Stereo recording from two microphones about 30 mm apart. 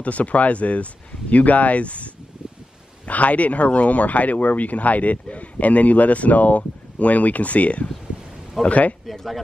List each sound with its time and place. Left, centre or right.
0.0 s speech: left